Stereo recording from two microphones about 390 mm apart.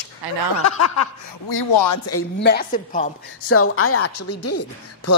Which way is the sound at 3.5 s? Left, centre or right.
Left.